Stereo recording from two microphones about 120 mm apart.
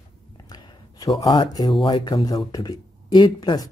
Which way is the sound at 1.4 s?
40° left (ahead or behind).